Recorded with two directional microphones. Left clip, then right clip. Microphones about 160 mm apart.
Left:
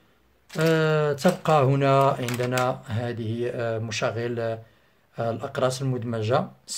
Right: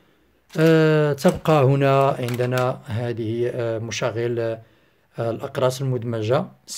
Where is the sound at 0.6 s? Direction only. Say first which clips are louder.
Right 5 dB; 40° right (ahead or behind).